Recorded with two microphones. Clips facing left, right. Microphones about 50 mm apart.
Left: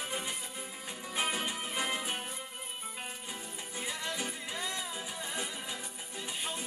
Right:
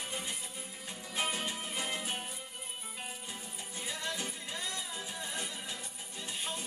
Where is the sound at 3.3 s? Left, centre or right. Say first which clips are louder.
Left 2 dB; centre.